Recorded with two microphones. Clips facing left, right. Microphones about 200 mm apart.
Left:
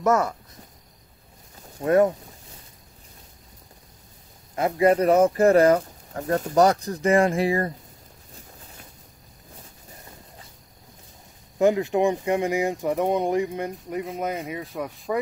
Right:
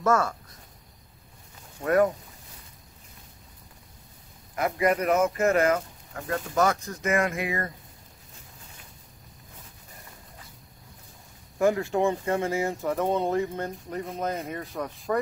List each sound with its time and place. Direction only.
0.0 s speech: 20° left (ahead or behind)
1.8 s speech: 25° left (ahead or behind)
4.6 s speech: 30° left (ahead or behind)
11.5 s speech: 20° left (ahead or behind)
14.3 s speech: centre (ahead or behind)